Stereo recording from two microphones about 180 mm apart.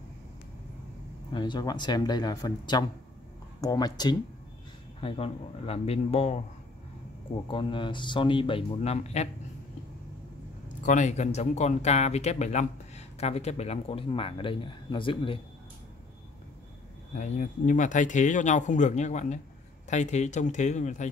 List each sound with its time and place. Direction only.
1.3 s speech: 25° left (ahead or behind)
7.4 s speech: 25° left (ahead or behind)
10.9 s speech: 40° left (ahead or behind)
17.2 s speech: 45° left (ahead or behind)